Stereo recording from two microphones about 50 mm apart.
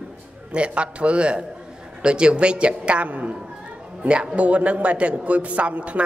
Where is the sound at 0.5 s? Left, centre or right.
Right.